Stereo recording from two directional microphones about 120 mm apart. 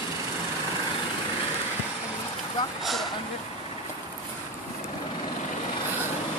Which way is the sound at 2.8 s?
Centre (ahead or behind).